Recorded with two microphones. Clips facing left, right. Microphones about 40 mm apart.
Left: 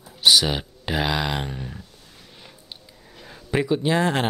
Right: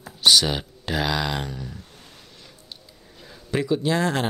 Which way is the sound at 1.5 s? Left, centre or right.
Left.